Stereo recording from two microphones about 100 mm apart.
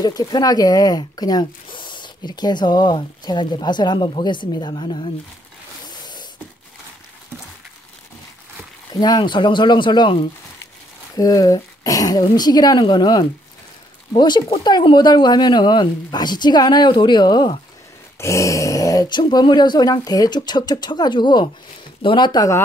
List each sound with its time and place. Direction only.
0.0 s speech: 40° left (ahead or behind); by 5.1 s 55° left (ahead or behind)
5.9 s a sound: 45° left (ahead or behind)
8.9 s speech: 40° left (ahead or behind)
11.1 s speech: 35° left (ahead or behind)
18.2 s speech: 30° left (ahead or behind)